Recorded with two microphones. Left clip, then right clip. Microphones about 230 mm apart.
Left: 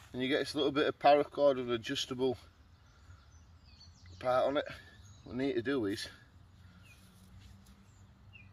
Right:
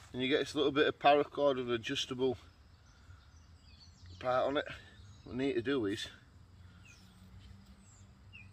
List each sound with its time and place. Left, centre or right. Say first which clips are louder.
0.1 s speech: even; centre
4.2 s speech: left 2 dB; left